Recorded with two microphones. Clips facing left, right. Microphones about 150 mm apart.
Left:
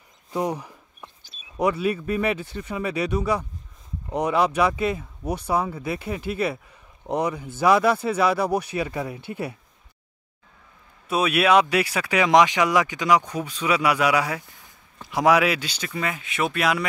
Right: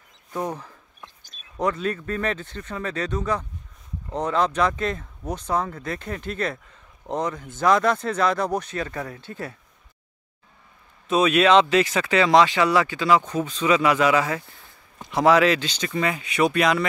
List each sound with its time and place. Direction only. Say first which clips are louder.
0.3 s speech: left 3 dB; 15° left (ahead or behind)
11.1 s speech: right 2 dB; 10° left (ahead or behind)